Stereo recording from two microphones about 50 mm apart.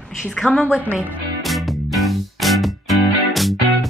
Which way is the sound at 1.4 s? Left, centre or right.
Centre.